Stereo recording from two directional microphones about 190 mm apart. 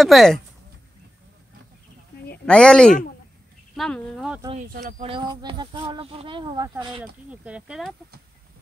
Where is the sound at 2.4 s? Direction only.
5° left (ahead or behind).